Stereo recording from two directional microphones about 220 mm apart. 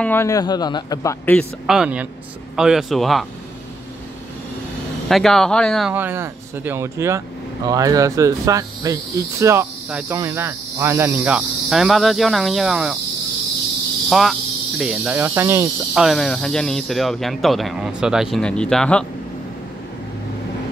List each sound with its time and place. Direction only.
0.0 s a man's voice: 10° left (ahead or behind)
1.7 s speech: 5° right (ahead or behind)
5.0 s speech: centre (ahead or behind)
14.0 s speech: centre (ahead or behind)
15.9 s speech: centre (ahead or behind)